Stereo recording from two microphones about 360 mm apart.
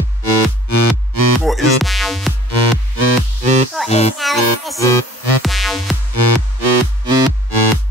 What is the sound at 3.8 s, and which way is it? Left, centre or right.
Music, centre.